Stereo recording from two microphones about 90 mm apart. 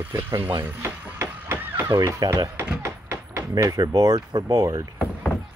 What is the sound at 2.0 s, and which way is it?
Speech, 40° right (ahead or behind).